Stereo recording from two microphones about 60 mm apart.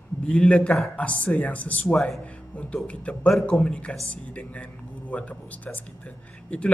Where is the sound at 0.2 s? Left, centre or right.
Centre.